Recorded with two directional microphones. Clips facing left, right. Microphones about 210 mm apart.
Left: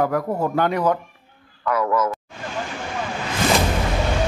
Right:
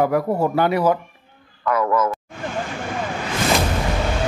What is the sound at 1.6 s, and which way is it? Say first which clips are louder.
Speech: right 1 dB; 50° right (ahead or behind).